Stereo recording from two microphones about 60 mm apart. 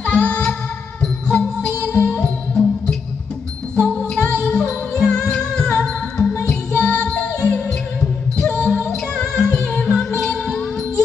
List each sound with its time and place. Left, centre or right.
0.0 s music: centre
4.2 s music: right
4.5 s music: centre
9.9 s music: centre